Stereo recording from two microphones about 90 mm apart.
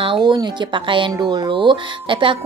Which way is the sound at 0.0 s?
60° right (ahead or behind).